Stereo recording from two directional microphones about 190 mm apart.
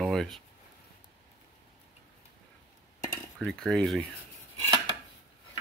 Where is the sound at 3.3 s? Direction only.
5° left (ahead or behind).